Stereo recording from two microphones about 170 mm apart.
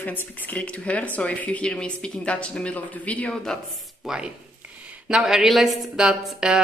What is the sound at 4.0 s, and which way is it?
Speech, 5° right (ahead or behind).